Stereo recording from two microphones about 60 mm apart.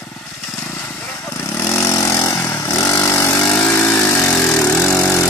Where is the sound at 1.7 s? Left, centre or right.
Left.